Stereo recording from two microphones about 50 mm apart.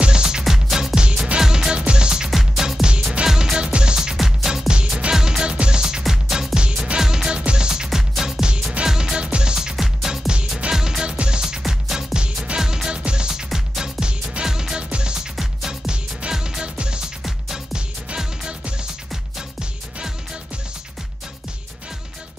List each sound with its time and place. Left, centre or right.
0.0 s music: centre
2.3 s music: centre
4.2 s music: centre
6.0 s music: centre